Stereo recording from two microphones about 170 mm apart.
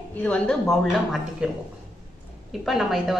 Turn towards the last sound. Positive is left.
turn(degrees=0)  # may be behind; listen again after turning